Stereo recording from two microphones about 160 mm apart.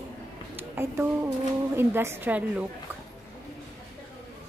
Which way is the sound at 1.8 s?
15° right (ahead or behind).